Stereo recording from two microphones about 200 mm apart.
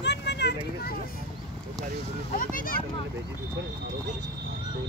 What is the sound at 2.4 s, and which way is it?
Speech, 45° left (ahead or behind).